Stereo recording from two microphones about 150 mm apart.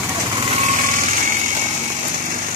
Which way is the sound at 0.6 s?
55° right (ahead or behind).